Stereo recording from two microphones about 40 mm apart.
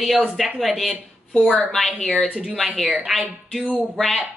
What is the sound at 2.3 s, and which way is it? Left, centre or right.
Speech, centre.